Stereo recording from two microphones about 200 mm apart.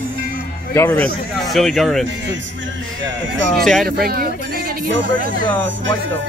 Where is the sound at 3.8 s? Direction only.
50° right (ahead or behind).